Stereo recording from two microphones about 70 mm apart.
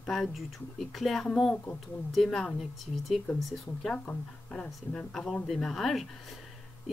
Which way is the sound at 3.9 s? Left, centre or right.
Centre.